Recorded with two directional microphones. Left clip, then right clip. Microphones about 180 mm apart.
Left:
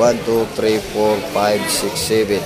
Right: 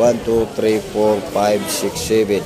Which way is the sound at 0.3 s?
25° right (ahead or behind).